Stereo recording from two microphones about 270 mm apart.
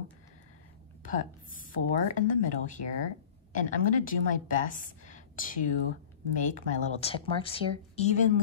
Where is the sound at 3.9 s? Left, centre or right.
Left.